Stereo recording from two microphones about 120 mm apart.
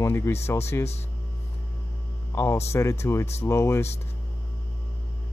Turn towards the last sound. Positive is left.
turn(degrees=25)  # may be behind; listen again after turning